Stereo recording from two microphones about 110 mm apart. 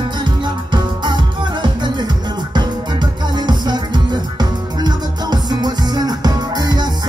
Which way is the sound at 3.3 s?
40° right (ahead or behind).